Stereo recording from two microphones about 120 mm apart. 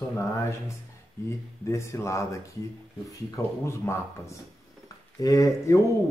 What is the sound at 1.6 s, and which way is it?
A man's voice, 25° left (ahead or behind).